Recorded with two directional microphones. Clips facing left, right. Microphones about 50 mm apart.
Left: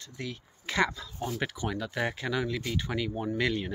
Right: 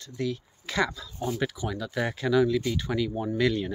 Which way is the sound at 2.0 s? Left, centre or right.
Left.